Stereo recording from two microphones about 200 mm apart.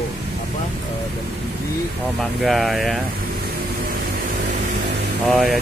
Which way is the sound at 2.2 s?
Centre (ahead or behind).